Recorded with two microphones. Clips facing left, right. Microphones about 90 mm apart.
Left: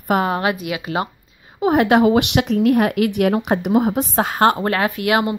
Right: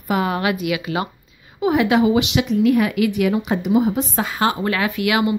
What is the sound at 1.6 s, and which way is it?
Speech, 50° left (ahead or behind).